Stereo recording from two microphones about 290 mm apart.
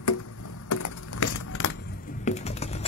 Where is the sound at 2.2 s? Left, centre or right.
Left.